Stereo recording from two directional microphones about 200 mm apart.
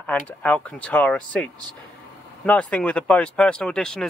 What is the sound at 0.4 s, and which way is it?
Speech, 5° left (ahead or behind).